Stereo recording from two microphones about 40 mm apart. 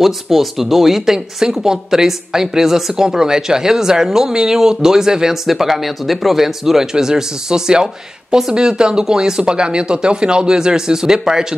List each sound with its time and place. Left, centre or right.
0.0 s speech: centre